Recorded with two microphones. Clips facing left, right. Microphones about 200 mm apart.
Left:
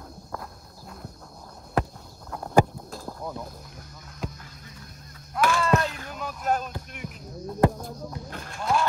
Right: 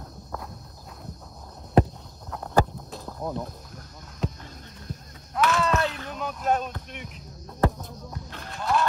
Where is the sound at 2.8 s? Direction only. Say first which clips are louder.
Left 1 dB; centre (ahead or behind).